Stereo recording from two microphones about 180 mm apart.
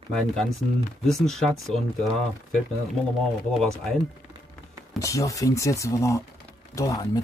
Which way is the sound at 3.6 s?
5° left (ahead or behind).